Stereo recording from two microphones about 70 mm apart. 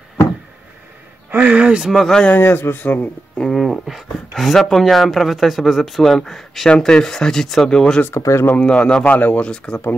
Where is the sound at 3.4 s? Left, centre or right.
Centre.